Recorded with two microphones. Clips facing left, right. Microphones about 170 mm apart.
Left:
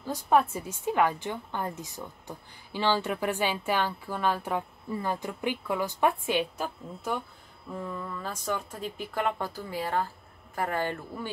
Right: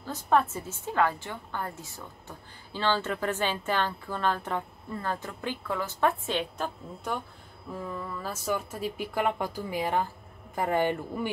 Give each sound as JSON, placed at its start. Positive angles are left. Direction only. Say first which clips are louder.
{"t": 0.0, "sound": "a woman's voice", "louder": "left 1 dB", "side_deg": 10}
{"t": 7.7, "sound": "a woman's voice", "louder": "even", "side_deg": 0}